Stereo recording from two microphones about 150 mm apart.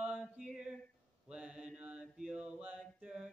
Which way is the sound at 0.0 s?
5° right (ahead or behind).